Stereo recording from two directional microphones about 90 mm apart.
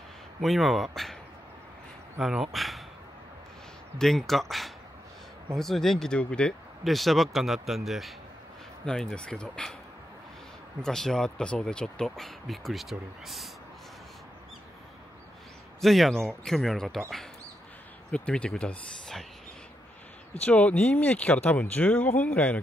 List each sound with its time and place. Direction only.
0.4 s speech: centre (ahead or behind)
2.1 s speech: 5° right (ahead or behind)
4.0 s speech: 5° left (ahead or behind)
10.8 s speech: 5° left (ahead or behind)
15.8 s speech: centre (ahead or behind)
18.1 s speech: 10° left (ahead or behind)
20.4 s speech: 15° left (ahead or behind)